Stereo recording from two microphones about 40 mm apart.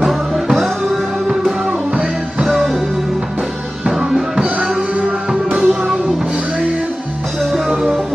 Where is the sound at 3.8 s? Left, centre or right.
Right.